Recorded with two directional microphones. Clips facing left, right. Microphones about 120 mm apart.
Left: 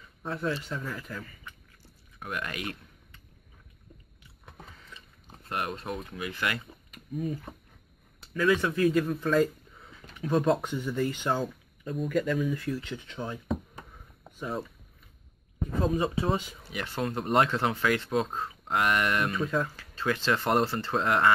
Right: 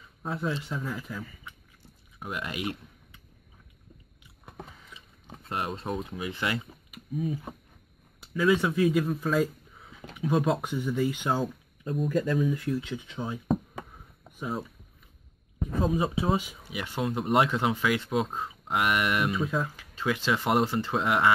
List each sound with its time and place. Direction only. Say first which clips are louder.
0.2 s speech: even; 10° right (ahead or behind)
4.5 s biting: right 4 dB; 15° right (ahead or behind)
5.5 s speech: right 1 dB; 20° right (ahead or behind)
6.9 s speech: right 1 dB; 5° right (ahead or behind)
8.5 s a man's voice: right 1 dB; 15° right (ahead or behind)
10.1 s a sound: even; 15° right (ahead or behind)
10.4 s speech: left 1 dB; 5° right (ahead or behind)
12.1 s speech: even; 30° right (ahead or behind)
12.5 s speech: right 3 dB; 15° right (ahead or behind)
14.4 s speech: even; 10° right (ahead or behind)
15.8 s speech: even; 10° right (ahead or behind)
18.7 s speech: even; 15° right (ahead or behind)